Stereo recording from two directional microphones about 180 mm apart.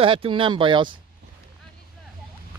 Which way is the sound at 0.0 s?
30° right (ahead or behind).